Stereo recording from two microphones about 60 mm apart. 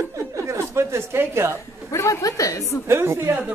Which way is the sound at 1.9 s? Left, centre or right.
Left.